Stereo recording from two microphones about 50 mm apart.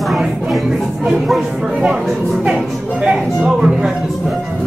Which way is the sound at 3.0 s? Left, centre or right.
Centre.